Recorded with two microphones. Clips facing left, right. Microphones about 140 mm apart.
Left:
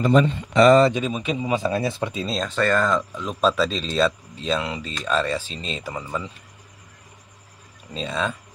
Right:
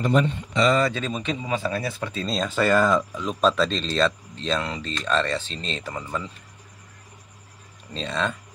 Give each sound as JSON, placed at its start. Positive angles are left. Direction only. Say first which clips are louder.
{"t": 0.5, "sound": "speech", "louder": "left 9 dB", "side_deg": 55}
{"t": 0.9, "sound": "speech", "louder": "left 3 dB", "side_deg": 10}
{"t": 2.1, "sound": "speech", "louder": "even", "side_deg": 0}
{"t": 7.9, "sound": "speech", "louder": "left 1 dB", "side_deg": 5}